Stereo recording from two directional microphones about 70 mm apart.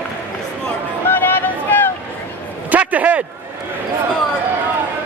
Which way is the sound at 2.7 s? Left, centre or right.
Right.